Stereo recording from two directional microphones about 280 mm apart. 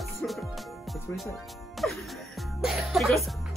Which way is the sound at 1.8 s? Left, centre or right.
Centre.